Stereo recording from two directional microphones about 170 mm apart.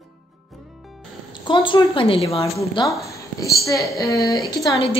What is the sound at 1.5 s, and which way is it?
A woman's voice, 30° left (ahead or behind).